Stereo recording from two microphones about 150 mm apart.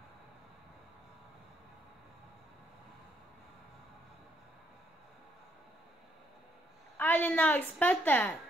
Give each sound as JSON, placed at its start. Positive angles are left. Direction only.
{"t": 7.0, "sound": "a woman's voice", "side_deg": 10}